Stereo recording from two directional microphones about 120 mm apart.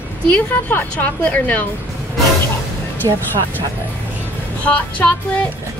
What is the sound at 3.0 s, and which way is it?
Speech, 35° right (ahead or behind).